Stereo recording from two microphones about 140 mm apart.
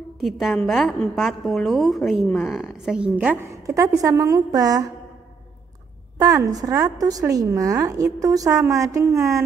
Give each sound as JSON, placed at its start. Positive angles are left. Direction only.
{"t": 0.2, "sound": "a woman's voice", "side_deg": 0}
{"t": 6.1, "sound": "a woman's voice", "side_deg": -25}